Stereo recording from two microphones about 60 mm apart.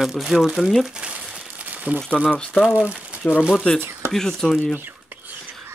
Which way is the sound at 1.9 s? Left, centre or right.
Left.